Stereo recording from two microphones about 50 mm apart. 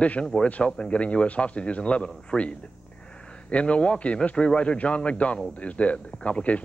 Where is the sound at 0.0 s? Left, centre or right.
Left.